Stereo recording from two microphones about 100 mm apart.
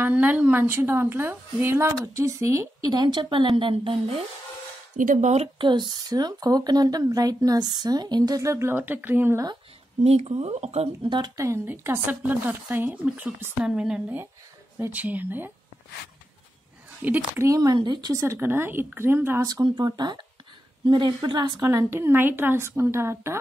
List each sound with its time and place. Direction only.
0.0 s speech: 15° right (ahead or behind)
2.9 s speech: 45° right (ahead or behind)
3.7 s speech: 65° right (ahead or behind)
5.6 s speech: 50° right (ahead or behind); by 9.4 s 20° right (ahead or behind)
10.0 s speech: 90° right
11.1 s speech: 50° right (ahead or behind)
11.3 s speech: 30° right (ahead or behind)
17.0 s speech: 20° right (ahead or behind)
17.4 s speech: 35° right (ahead or behind)
17.7 s speech: 50° right (ahead or behind)
18.1 s speech: 25° right (ahead or behind)
19.4 s speech: 45° right (ahead or behind)
21.6 s speech: 30° right (ahead or behind)